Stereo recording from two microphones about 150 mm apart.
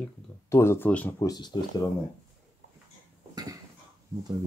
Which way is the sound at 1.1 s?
25° left (ahead or behind).